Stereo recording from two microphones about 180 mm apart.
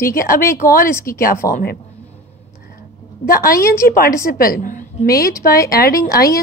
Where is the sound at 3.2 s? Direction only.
55° left (ahead or behind).